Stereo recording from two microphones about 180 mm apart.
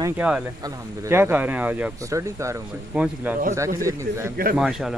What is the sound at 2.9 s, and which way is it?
Speech, 5° right (ahead or behind).